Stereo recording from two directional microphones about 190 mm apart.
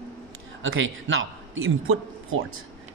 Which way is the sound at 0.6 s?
90° right.